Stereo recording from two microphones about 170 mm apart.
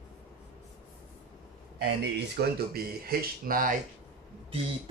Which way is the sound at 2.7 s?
60° right (ahead or behind).